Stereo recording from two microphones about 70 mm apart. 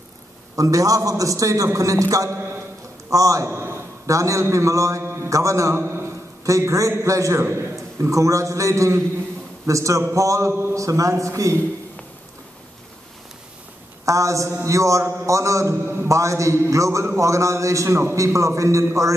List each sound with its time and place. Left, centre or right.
0.6 s a man's voice: right
3.4 s a sound: right
4.0 s a man's voice: right
10.5 s a man's voice: right
10.8 s a man's voice: right
14.0 s a man's voice: right
15.7 s a man's voice: right
16.1 s a man's voice: right